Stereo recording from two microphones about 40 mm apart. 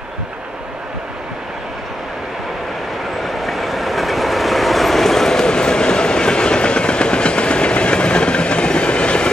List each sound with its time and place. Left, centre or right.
3.2 s train: centre; by 9.3 s left